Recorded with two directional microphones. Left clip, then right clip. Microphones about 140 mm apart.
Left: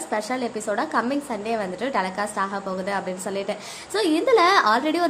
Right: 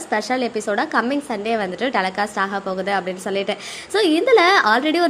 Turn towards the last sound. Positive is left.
turn(degrees=-15)  # may be behind; listen again after turning